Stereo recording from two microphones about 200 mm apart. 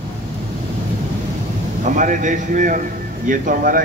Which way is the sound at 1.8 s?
40° right (ahead or behind).